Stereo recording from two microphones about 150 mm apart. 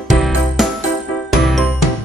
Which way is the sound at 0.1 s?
Centre (ahead or behind).